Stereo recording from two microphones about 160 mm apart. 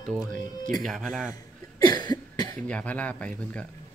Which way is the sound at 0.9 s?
Centre (ahead or behind).